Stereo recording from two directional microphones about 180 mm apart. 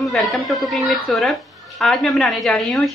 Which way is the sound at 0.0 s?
Centre (ahead or behind).